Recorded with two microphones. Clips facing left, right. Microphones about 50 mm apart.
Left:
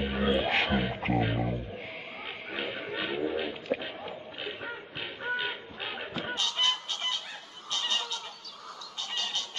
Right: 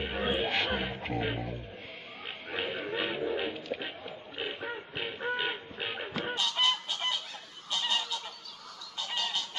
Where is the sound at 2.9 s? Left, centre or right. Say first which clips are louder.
Even; centre.